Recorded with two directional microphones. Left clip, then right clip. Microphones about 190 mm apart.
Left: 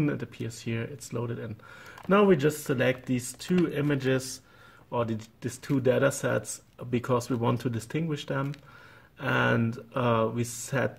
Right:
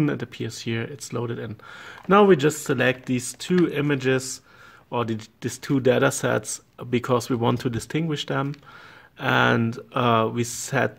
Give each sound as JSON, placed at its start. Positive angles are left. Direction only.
{"t": 0.0, "sound": "speech", "side_deg": -40}